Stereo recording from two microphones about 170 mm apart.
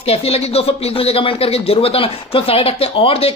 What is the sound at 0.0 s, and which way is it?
Speech, 35° left (ahead or behind).